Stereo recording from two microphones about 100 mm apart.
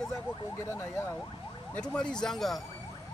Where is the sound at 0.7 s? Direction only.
25° left (ahead or behind).